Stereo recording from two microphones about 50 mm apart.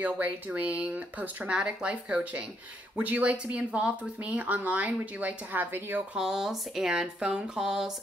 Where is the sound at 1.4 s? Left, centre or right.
Centre; by 6.0 s right.